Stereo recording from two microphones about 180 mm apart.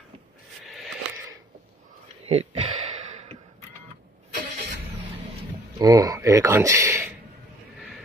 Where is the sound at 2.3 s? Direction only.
35° right (ahead or behind).